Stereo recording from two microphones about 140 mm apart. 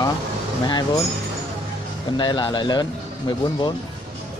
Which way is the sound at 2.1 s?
35° left (ahead or behind).